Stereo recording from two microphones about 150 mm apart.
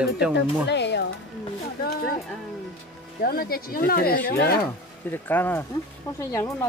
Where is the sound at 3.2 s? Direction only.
85° left.